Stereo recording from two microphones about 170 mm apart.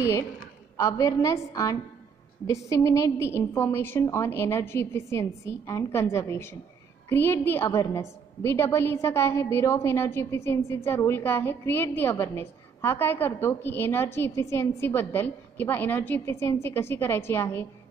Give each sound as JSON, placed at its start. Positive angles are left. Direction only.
{"t": 0.0, "sound": "a woman's voice", "side_deg": 15}